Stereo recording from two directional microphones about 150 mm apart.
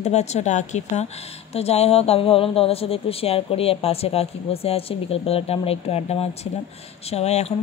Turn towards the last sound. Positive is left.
turn(degrees=45)  # may be behind; listen again after turning